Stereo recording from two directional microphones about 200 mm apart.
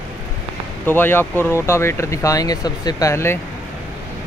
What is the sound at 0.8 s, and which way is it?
Speech, 10° left (ahead or behind).